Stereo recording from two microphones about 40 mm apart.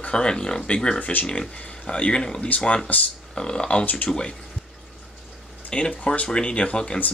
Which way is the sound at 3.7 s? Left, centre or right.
Left.